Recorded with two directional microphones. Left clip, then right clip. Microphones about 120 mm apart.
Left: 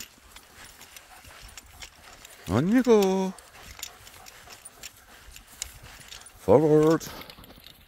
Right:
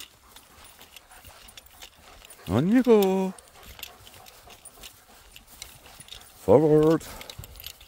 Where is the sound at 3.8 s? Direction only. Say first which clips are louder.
Even; 30° right (ahead or behind).